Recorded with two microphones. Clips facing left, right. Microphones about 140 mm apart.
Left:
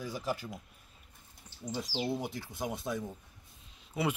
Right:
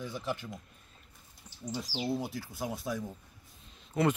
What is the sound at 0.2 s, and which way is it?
Speech, 40° left (ahead or behind).